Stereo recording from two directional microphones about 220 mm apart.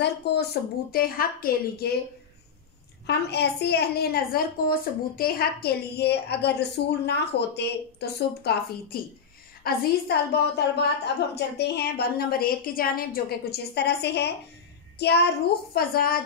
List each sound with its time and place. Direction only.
0.0 s a woman's voice: 50° left (ahead or behind)
3.1 s a woman's voice: 50° left (ahead or behind)